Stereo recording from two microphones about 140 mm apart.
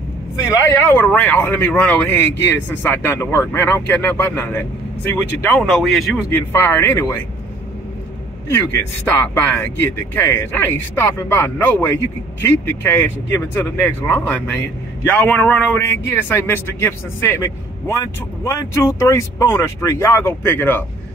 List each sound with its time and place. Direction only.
0.5 s a man's voice: 20° left (ahead or behind)
5.6 s speech: centre (ahead or behind)
6.3 s a man's voice: 15° left (ahead or behind)
8.5 s a man's voice: 15° left (ahead or behind)